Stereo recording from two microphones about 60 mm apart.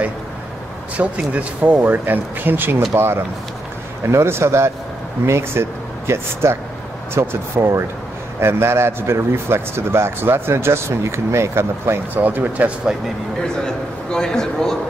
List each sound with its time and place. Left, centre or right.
0.9 s a man's voice: right
12.1 s speech: right
14.1 s a man's voice: centre